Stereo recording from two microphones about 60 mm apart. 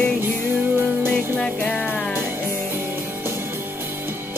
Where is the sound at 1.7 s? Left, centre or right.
Centre.